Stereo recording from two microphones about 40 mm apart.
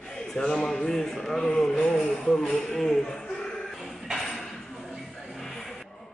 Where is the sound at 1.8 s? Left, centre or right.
Left.